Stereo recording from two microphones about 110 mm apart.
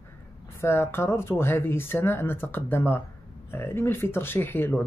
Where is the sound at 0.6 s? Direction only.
20° left (ahead or behind).